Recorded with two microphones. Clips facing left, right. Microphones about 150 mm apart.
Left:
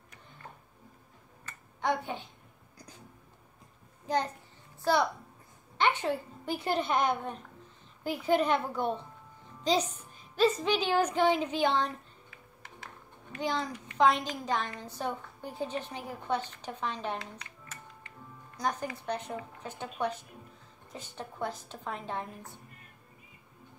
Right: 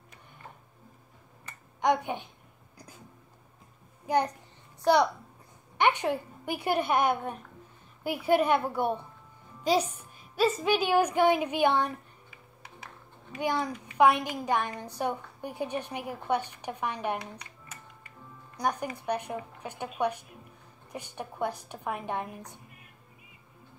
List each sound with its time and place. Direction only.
1.8 s a child's voice: 15° right (ahead or behind)
4.0 s a sound: 10° right (ahead or behind)
5.8 s a woman's voice: 15° right (ahead or behind)
9.6 s music: 10° right (ahead or behind)
10.3 s a woman's voice: 10° right (ahead or behind)
13.4 s a woman's voice: 10° right (ahead or behind)